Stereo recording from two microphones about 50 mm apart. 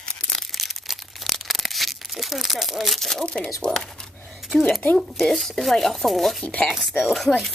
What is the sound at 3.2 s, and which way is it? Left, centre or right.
Speech, left.